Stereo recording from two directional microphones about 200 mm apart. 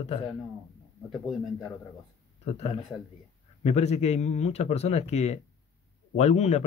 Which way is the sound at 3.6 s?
30° left (ahead or behind).